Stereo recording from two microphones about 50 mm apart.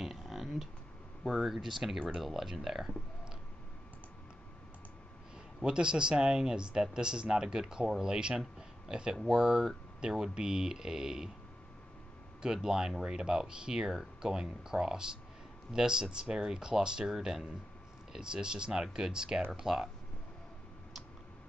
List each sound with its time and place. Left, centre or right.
0.0 s a sound: centre
1.2 s speech: centre
5.6 s speech: centre
12.6 s speech: centre